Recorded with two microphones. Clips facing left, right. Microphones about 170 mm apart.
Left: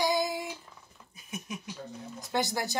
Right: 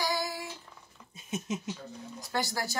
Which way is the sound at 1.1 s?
25° right (ahead or behind).